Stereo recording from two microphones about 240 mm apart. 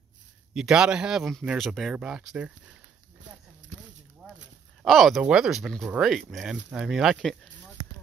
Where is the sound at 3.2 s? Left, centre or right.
Right.